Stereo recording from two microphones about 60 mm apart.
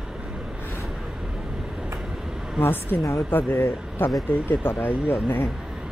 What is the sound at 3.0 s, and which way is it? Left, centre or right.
Speech, left.